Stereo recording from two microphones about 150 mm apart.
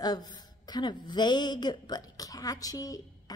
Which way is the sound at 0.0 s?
25° left (ahead or behind).